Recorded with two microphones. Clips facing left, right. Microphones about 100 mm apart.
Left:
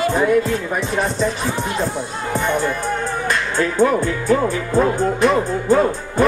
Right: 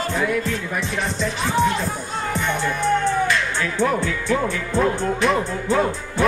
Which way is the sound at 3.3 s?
40° left (ahead or behind).